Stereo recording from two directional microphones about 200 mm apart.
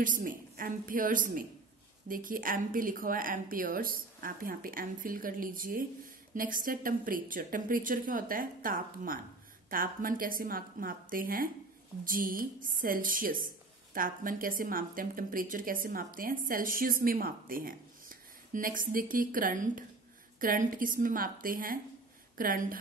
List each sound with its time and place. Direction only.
0.0 s speech: 40° right (ahead or behind)